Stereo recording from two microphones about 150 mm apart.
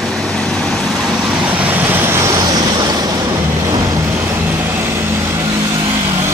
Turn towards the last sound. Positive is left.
turn(degrees=-20)  # may be behind; listen again after turning